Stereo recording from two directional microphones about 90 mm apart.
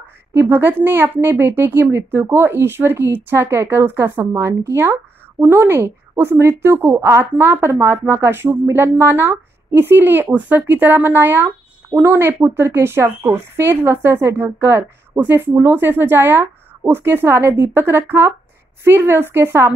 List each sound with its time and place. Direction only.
0.3 s speech: 30° right (ahead or behind)